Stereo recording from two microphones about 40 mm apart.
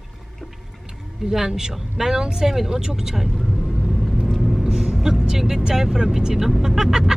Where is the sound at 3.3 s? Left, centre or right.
Centre.